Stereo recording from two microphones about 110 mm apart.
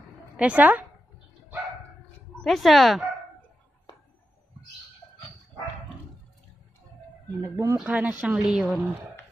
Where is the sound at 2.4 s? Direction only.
Centre (ahead or behind).